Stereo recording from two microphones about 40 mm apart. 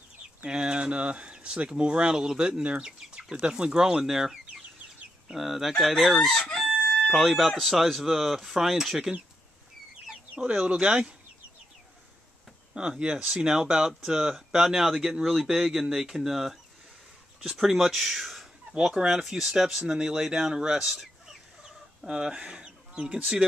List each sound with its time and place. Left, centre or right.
0.5 s speech: right
2.6 s speech: right; by 9.1 s centre
10.3 s speech: right
12.7 s speech: right; by 18.5 s centre
18.7 s speech: centre
19.2 s speech: centre
20.8 s fowl: centre
22.0 s speech: right